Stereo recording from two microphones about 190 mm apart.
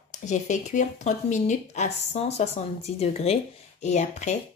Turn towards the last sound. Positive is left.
turn(degrees=40)  # may be behind; listen again after turning